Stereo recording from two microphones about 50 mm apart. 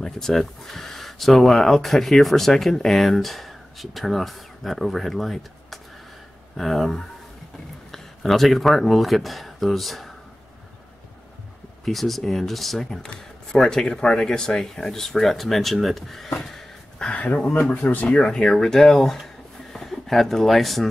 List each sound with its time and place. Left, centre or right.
0.0 s speech: centre
11.8 s speech: centre
13.0 s speech: centre
17.0 s speech: left
18.0 s speech: centre